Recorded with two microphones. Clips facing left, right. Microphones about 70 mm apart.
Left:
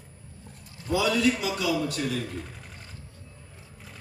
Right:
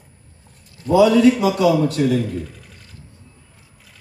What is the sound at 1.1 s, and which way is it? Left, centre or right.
A man's voice, right.